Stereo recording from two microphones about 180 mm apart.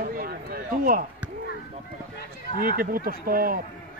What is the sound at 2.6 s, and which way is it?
A man's voice, 55° right (ahead or behind).